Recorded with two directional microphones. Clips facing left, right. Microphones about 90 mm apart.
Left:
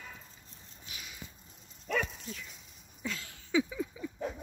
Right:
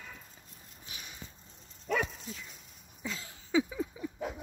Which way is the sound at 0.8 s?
30° right (ahead or behind).